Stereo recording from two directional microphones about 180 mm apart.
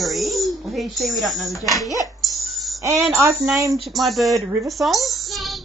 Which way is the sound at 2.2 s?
Centre (ahead or behind).